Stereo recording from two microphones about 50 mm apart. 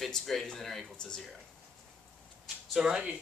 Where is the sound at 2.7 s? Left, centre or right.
Centre.